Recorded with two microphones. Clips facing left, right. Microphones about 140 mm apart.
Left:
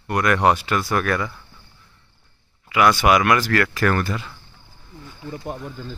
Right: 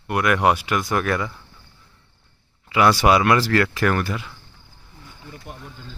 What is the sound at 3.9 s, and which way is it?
Speech, 10° right (ahead or behind).